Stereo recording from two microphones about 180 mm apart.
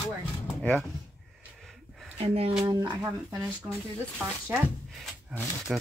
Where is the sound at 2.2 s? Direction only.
35° right (ahead or behind).